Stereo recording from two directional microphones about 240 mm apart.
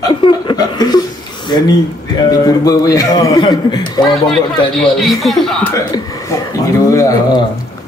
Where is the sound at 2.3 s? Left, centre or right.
Centre.